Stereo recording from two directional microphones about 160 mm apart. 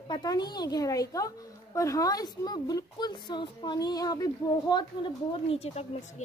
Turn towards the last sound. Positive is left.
turn(degrees=40)  # may be behind; listen again after turning